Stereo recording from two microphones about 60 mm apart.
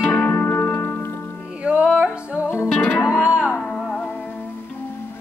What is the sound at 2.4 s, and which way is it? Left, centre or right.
Music, left.